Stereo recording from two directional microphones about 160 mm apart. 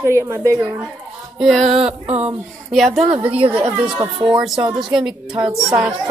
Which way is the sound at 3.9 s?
30° right (ahead or behind).